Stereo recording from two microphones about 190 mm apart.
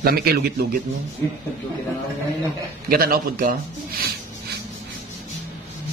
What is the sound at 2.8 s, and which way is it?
A man's voice, 50° right (ahead or behind).